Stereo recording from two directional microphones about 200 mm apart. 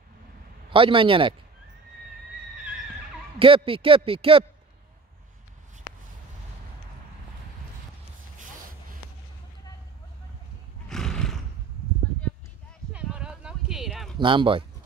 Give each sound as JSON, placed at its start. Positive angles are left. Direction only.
{"t": 0.7, "sound": "a man's voice", "side_deg": -25}
{"t": 3.3, "sound": "a man's voice", "side_deg": -25}
{"t": 10.9, "sound": "neigh", "side_deg": 5}
{"t": 12.9, "sound": "a sound", "side_deg": -5}
{"t": 14.1, "sound": "speech", "side_deg": -25}